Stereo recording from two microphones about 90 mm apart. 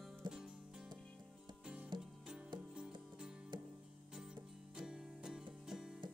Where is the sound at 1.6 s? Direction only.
10° right (ahead or behind).